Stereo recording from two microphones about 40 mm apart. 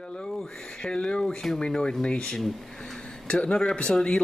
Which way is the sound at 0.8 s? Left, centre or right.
Left.